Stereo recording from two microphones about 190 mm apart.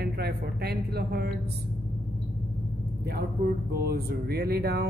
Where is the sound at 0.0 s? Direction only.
55° right (ahead or behind).